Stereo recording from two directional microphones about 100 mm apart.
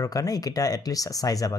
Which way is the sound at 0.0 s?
35° left (ahead or behind).